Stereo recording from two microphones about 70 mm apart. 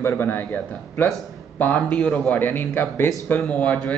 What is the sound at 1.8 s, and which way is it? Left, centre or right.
Speech, centre.